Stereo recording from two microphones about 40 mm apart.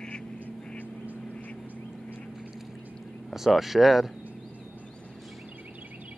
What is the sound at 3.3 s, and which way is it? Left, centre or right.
Speech, centre.